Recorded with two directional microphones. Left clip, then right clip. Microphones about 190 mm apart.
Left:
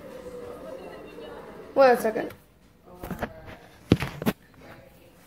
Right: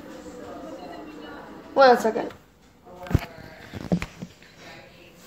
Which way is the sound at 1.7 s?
10° left (ahead or behind).